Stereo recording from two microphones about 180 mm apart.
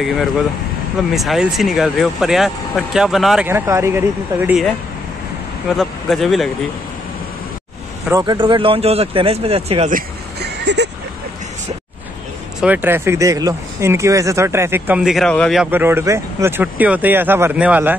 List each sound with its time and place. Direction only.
0.0 s speech: centre (ahead or behind)
3.4 s speech: 15° right (ahead or behind)
5.8 s speech: centre (ahead or behind)
8.1 s speech: 20° right (ahead or behind)
9.9 s vehicle: 70° right (ahead or behind)
12.5 s speech: 10° right (ahead or behind)
15.6 s speech: 10° right (ahead or behind)